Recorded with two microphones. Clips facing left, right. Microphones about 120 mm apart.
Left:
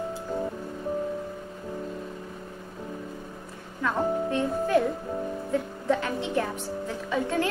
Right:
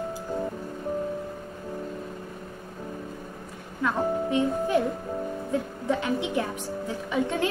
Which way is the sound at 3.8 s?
15° right (ahead or behind).